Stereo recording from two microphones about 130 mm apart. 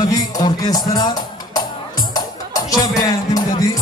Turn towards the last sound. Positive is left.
turn(degrees=30)  # may be behind; listen again after turning